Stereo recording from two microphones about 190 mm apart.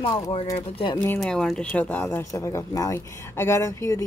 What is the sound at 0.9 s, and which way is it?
Speech, 10° left (ahead or behind).